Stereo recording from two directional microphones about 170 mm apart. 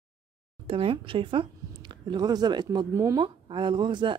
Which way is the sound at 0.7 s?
35° right (ahead or behind).